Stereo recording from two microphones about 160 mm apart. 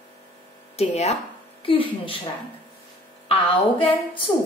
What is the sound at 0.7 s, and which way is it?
A woman's voice, 45° left (ahead or behind).